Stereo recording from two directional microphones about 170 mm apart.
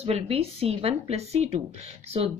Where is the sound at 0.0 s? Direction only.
35° right (ahead or behind).